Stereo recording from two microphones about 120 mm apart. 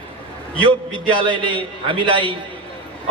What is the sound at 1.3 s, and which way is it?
A man's voice, 40° right (ahead or behind).